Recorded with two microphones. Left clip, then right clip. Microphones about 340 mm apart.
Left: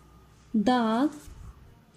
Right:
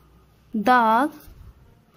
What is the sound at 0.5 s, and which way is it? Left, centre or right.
Speech, right.